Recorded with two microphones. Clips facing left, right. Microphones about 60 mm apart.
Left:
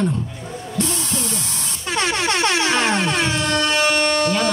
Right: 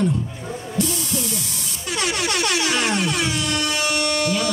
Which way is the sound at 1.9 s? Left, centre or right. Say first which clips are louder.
Left 3 dB; left.